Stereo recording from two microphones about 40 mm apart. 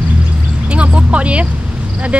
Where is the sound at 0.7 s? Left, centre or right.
Right.